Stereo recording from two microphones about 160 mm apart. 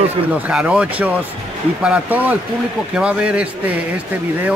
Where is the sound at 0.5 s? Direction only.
5° right (ahead or behind).